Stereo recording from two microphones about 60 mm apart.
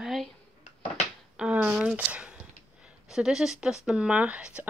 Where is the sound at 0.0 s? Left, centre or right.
Centre.